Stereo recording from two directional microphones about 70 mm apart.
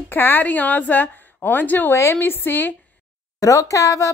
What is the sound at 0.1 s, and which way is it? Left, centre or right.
A woman's voice, left.